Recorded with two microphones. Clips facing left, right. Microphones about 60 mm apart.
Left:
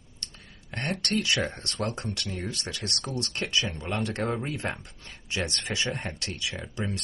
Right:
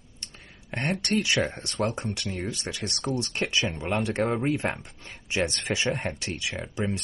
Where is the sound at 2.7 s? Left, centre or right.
Right.